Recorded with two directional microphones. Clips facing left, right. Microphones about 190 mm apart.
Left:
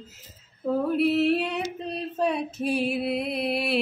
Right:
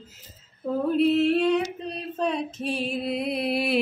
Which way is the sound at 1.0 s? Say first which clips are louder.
Right 4 dB; 5° left (ahead or behind).